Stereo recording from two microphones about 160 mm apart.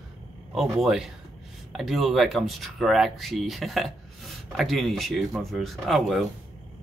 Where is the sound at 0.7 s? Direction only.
Centre (ahead or behind).